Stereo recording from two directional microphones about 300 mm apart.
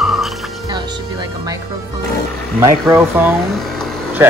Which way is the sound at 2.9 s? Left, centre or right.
Centre.